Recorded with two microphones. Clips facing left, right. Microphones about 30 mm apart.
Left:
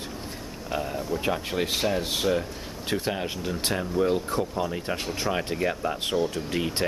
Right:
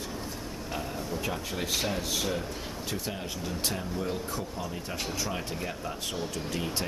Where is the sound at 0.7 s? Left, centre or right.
Centre.